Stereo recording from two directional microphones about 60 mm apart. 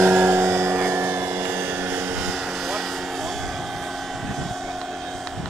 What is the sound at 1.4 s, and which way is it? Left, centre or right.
Vehicle, right.